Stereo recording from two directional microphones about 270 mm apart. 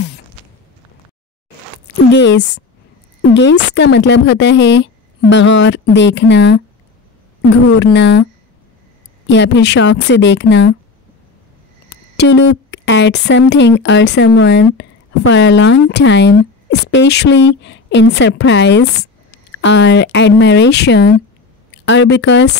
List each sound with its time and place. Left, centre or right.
2.1 s a woman's voice: left
7.6 s speech: left
9.3 s a woman's voice: left
11.9 s a woman's voice: left